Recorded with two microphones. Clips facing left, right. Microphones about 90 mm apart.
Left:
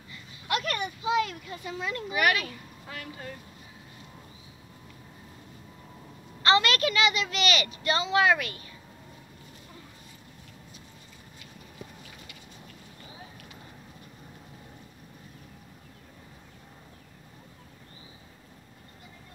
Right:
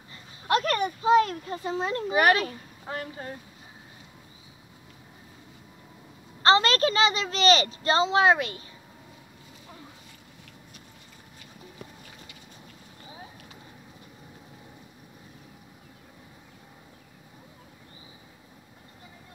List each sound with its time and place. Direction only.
0.1 s speech: 35° right (ahead or behind)
6.4 s a child's voice: 35° right (ahead or behind)